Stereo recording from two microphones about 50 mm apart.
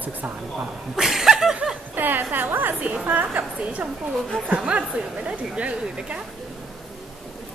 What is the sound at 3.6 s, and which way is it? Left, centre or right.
A woman's voice, right.